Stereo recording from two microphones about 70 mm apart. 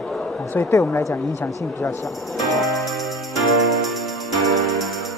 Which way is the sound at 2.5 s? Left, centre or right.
Centre.